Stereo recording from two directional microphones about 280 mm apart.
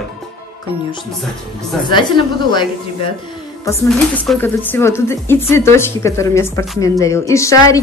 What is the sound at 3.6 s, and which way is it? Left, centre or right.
A woman's voice, centre.